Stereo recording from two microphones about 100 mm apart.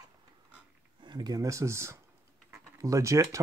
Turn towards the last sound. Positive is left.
turn(degrees=-30)  # may be behind; listen again after turning